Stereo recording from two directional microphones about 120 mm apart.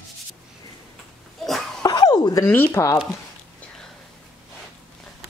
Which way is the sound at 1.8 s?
40° left (ahead or behind).